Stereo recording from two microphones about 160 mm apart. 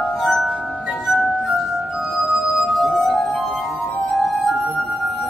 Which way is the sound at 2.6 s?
Centre (ahead or behind).